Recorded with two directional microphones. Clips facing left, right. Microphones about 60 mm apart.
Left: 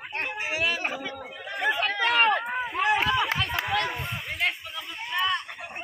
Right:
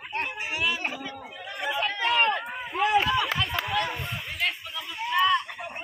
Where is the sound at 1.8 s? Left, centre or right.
Left.